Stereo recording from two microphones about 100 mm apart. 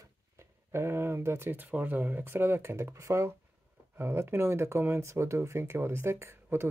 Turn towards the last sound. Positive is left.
turn(degrees=-25)  # may be behind; listen again after turning